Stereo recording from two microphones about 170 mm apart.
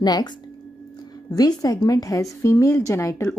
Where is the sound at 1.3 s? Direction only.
20° left (ahead or behind).